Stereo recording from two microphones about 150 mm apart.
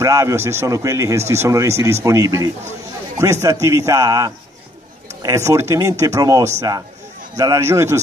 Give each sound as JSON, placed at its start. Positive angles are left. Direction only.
{"t": 0.0, "sound": "speech", "side_deg": -20}